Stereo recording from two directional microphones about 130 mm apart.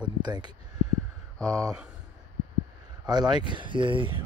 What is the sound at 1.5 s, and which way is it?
Speech, 25° right (ahead or behind).